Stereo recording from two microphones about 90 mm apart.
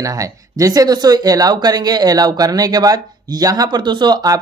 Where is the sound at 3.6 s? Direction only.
55° right (ahead or behind).